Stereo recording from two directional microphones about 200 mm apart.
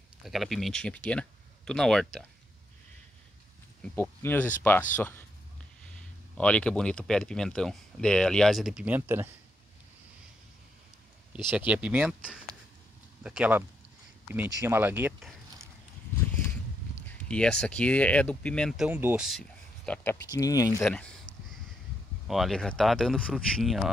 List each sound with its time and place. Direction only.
0.2 s speech: centre (ahead or behind)
3.8 s speech: 10° left (ahead or behind)
6.3 s speech: 5° left (ahead or behind); by 9.3 s 10° right (ahead or behind)
11.5 s speech: 5° right (ahead or behind)
17.1 s speech: 5° left (ahead or behind)
19.9 s speech: 10° left (ahead or behind)
20.8 s speech: 5° left (ahead or behind)
22.3 s speech: centre (ahead or behind)